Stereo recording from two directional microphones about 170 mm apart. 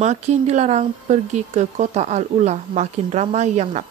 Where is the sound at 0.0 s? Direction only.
40° right (ahead or behind).